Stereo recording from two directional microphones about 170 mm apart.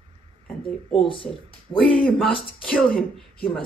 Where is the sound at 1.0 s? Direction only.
30° left (ahead or behind).